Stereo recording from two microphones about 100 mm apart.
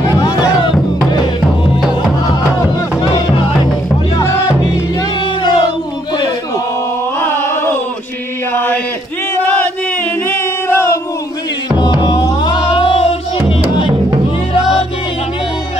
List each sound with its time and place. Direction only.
0.0 s a sound: 35° left (ahead or behind)
1.8 s music: 5° right (ahead or behind)
5.4 s music: 45° left (ahead or behind)
7.2 s a sound: 25° left (ahead or behind)
9.4 s chant: 15° left (ahead or behind)
11.8 s music: 45° left (ahead or behind); by 13.1 s 70° left (ahead or behind)